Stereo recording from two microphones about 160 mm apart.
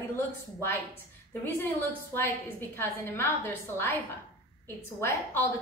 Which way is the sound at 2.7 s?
15° left (ahead or behind).